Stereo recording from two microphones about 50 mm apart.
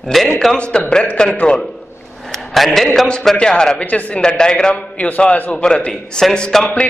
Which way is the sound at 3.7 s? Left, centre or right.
Left.